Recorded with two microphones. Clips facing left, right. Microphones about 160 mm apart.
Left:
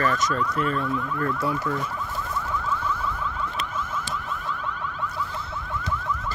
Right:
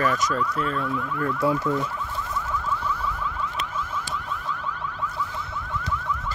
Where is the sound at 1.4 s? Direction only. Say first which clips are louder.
Right 3 dB; 15° right (ahead or behind).